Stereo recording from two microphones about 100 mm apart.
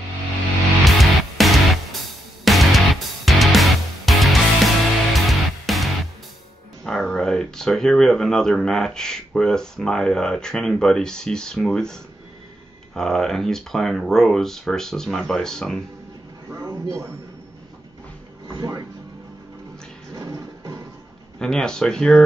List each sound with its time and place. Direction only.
0.8 s music: centre (ahead or behind)
6.8 s speech: 5° left (ahead or behind)
16.4 s a man's voice: 25° right (ahead or behind)
18.5 s speech: 35° right (ahead or behind)
20.2 s music: 35° right (ahead or behind)
21.4 s speech: 5° left (ahead or behind)